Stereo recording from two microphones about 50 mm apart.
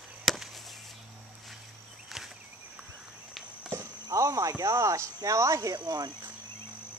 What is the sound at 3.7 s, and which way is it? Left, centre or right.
Speech, right.